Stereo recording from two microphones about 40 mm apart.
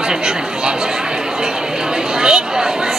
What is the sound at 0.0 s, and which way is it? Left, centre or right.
Chatter, centre.